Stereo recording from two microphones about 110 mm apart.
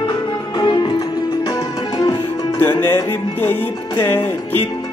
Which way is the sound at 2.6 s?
20° left (ahead or behind).